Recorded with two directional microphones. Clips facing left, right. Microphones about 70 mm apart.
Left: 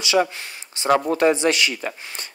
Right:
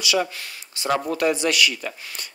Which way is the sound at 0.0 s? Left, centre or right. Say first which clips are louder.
Left 3 dB; left.